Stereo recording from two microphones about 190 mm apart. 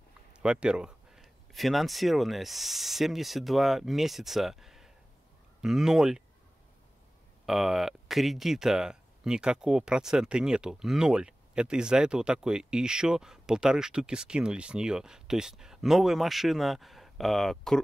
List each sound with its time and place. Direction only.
0.4 s speech: 5° right (ahead or behind)
7.4 s speech: centre (ahead or behind)